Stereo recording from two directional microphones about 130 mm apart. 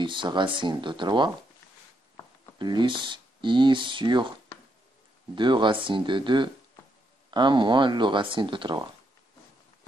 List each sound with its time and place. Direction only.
0.0 s speech: 35° right (ahead or behind)
2.6 s speech: 35° right (ahead or behind)
5.3 s speech: 35° right (ahead or behind)